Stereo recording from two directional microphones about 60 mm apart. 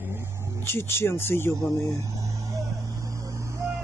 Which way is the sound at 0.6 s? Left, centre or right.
Left.